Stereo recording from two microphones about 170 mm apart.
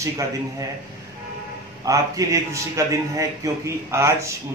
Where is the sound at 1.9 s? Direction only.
20° right (ahead or behind).